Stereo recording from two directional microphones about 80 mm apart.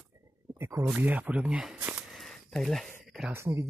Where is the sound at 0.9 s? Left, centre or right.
Centre.